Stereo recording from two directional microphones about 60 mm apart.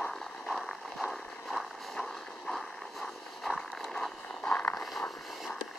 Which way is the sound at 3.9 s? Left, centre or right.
Centre.